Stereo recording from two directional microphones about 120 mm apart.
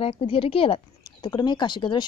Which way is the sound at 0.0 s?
50° left (ahead or behind).